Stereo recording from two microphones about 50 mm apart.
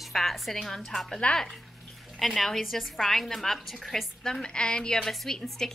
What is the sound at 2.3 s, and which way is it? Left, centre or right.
A woman's voice, centre.